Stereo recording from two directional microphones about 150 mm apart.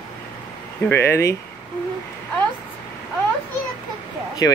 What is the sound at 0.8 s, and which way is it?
Speech, 15° left (ahead or behind).